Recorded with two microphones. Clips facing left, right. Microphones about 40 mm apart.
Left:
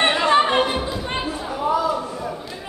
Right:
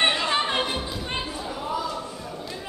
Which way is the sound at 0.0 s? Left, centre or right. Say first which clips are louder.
Left 6 dB; centre.